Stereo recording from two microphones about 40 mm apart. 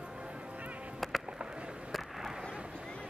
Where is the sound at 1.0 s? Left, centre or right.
Centre.